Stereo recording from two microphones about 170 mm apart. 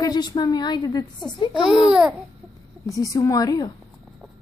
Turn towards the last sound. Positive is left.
turn(degrees=25)  # may be behind; listen again after turning